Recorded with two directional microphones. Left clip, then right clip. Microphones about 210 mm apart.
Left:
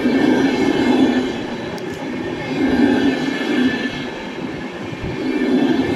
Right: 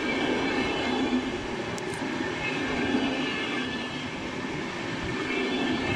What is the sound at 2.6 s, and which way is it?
Train, 45° left (ahead or behind).